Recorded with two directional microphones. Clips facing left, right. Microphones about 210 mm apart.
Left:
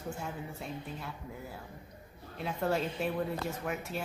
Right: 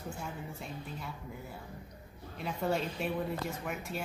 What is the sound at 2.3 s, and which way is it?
Speech, centre (ahead or behind).